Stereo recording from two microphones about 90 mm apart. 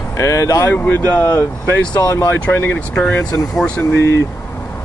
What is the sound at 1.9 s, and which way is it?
Speech, 40° left (ahead or behind).